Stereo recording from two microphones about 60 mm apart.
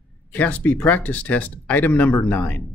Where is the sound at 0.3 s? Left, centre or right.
Left.